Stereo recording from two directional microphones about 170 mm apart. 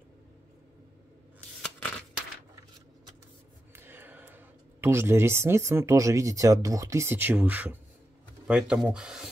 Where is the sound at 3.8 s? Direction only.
10° right (ahead or behind).